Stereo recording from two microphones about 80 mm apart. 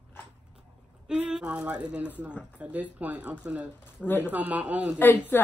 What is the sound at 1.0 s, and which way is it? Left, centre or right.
Speech, centre.